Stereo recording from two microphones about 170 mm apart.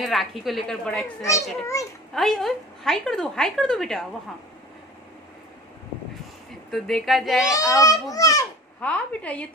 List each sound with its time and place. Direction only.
0.0 s a woman's voice: centre (ahead or behind)
1.2 s a woman's voice: 20° left (ahead or behind)
2.1 s a woman's voice: centre (ahead or behind)
6.7 s a woman's voice: centre (ahead or behind)
7.8 s a child's voice: 20° left (ahead or behind)
8.8 s a woman's voice: 10° left (ahead or behind)